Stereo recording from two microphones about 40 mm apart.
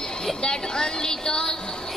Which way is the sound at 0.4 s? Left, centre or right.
Centre.